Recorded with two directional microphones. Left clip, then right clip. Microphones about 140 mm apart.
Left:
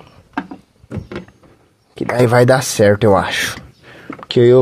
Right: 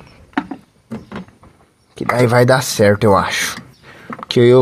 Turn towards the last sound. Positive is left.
turn(degrees=0)  # may be behind; listen again after turning